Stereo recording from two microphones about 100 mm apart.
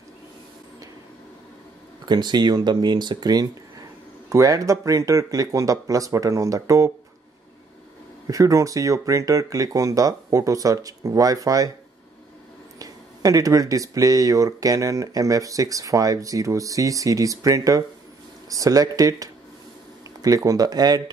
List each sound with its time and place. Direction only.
2.0 s speech: 45° right (ahead or behind)
8.3 s speech: 35° right (ahead or behind)
12.7 s speech: 35° right (ahead or behind)